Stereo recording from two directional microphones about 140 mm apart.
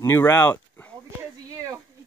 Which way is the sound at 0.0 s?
15° left (ahead or behind).